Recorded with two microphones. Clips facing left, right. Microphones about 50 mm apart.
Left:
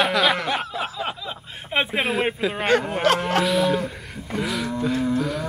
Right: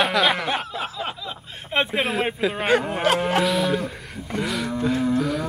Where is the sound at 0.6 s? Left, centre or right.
Centre.